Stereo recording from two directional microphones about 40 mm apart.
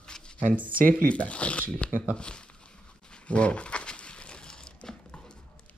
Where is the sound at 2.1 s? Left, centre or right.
Left.